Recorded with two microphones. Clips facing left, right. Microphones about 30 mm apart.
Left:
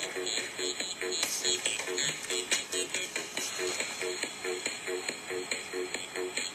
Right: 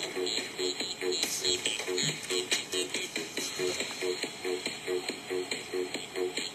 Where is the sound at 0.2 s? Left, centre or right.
Right.